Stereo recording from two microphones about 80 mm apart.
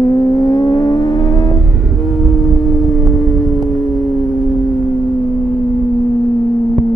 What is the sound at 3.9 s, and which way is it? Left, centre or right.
Singing bowl, centre.